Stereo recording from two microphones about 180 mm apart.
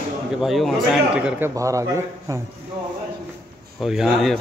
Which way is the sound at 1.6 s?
15° right (ahead or behind).